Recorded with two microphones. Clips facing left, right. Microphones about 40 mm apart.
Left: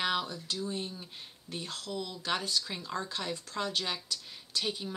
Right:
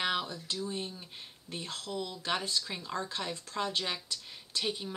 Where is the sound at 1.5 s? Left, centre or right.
Centre.